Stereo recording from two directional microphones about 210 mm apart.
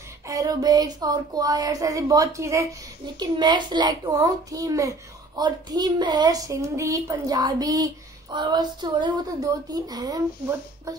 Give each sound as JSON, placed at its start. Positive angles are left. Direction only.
{"t": 0.3, "sound": "a woman's voice", "side_deg": -15}